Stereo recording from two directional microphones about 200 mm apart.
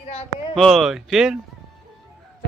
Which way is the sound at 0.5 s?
Centre (ahead or behind).